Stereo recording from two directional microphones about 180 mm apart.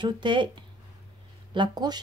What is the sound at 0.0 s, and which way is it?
Speech, 25° right (ahead or behind).